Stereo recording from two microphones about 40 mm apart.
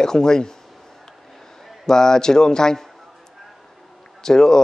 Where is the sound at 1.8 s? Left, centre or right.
Centre.